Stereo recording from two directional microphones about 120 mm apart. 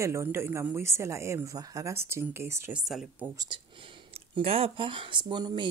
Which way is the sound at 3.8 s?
50° right (ahead or behind).